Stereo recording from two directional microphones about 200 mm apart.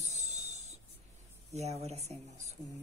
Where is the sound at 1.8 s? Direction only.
35° right (ahead or behind).